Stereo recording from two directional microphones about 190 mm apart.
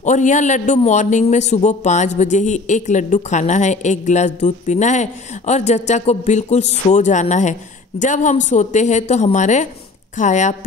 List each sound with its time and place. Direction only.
0.0 s a woman's voice: 40° left (ahead or behind)